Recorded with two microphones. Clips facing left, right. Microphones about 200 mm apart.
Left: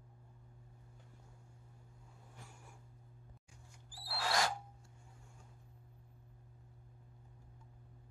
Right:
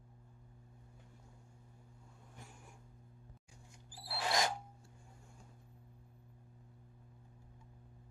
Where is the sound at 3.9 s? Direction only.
20° right (ahead or behind).